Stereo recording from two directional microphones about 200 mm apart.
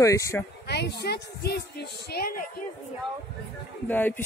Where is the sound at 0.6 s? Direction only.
55° left (ahead or behind).